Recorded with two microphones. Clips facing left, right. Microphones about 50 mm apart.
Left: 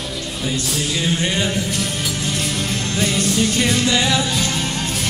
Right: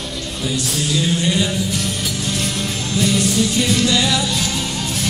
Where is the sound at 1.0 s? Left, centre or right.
Left.